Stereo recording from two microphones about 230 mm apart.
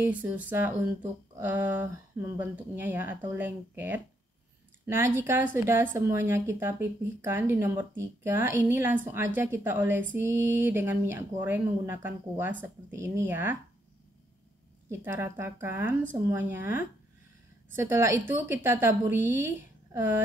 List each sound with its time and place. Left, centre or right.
0.0 s speech: centre
14.9 s speech: centre